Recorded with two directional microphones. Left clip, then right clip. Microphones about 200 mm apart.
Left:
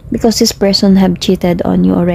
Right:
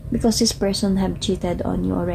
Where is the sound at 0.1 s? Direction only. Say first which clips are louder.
Left 9 dB; 40° left (ahead or behind).